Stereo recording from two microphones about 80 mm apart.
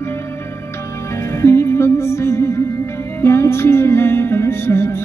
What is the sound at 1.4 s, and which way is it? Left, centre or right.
Music, left.